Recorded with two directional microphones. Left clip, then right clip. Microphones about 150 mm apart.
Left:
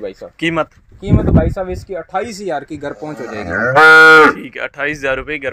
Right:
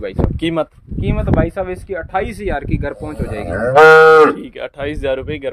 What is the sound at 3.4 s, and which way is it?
Cattle, 65° right (ahead or behind).